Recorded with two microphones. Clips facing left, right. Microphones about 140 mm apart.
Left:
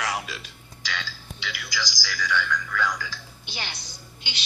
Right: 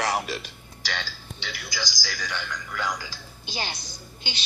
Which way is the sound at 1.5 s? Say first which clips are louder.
Left 1 dB; 30° right (ahead or behind).